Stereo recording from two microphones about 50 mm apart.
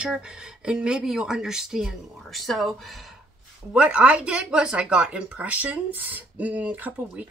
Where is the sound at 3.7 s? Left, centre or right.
Right.